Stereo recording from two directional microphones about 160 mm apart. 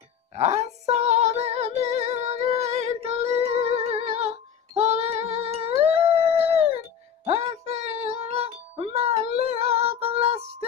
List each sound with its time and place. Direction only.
0.3 s music: 40° right (ahead or behind)
6.1 s dog: 40° right (ahead or behind)
7.2 s music: 40° right (ahead or behind)